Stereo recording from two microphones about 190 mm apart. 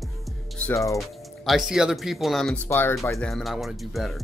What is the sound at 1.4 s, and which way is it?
Speech, centre (ahead or behind).